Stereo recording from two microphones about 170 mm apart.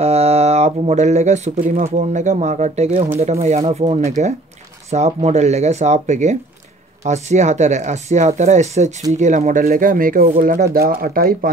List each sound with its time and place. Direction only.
0.0 s speech: 40° right (ahead or behind); by 11.5 s 60° right (ahead or behind)